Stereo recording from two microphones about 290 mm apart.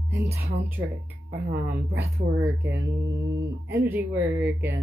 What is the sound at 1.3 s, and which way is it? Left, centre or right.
Speech, right.